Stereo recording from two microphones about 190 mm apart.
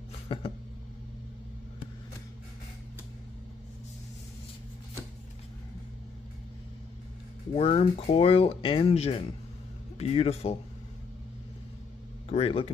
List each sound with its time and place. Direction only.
0.3 s a sound: 30° left (ahead or behind)
7.5 s speech: 30° left (ahead or behind)
12.3 s speech: 30° left (ahead or behind)